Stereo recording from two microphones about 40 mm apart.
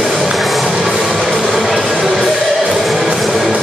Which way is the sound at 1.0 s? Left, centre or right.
Centre.